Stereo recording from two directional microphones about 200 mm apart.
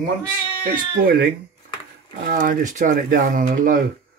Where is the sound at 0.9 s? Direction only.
50° right (ahead or behind).